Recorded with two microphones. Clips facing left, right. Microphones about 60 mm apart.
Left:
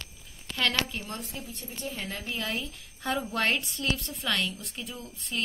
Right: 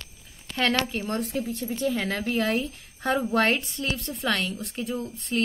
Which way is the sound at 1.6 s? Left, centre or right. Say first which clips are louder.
Right 9 dB; right.